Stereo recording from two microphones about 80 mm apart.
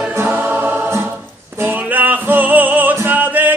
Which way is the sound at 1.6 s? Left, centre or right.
Right.